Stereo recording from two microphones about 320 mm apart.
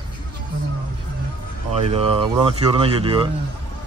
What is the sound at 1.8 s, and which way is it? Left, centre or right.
Speech, centre.